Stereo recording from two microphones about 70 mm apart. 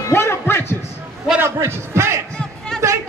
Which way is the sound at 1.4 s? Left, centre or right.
Right.